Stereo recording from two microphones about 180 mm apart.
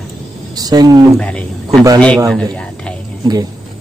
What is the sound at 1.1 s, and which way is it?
Speech, 5° left (ahead or behind).